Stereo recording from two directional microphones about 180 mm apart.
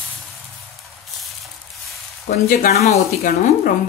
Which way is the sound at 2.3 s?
50° left (ahead or behind).